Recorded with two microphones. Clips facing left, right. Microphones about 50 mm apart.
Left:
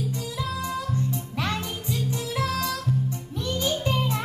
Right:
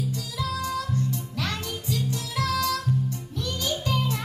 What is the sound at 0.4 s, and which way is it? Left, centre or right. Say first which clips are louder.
Music: right 2 dB; left.